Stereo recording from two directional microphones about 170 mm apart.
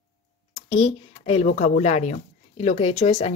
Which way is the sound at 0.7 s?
35° left (ahead or behind).